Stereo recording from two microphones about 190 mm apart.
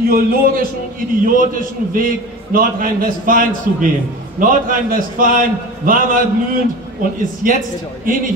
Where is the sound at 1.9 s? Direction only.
50° right (ahead or behind).